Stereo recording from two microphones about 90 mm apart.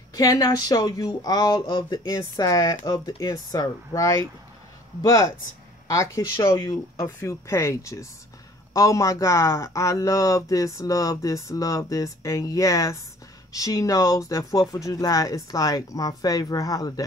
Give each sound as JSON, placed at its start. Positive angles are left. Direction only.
{"t": 0.1, "sound": "speech", "side_deg": 40}
{"t": 1.7, "sound": "speech", "side_deg": 60}
{"t": 2.0, "sound": "speech", "side_deg": 40}